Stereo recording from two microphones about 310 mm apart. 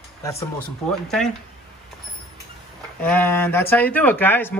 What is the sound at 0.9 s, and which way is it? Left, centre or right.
Speech, centre.